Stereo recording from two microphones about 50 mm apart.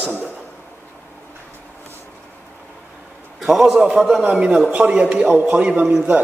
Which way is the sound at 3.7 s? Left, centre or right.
Centre.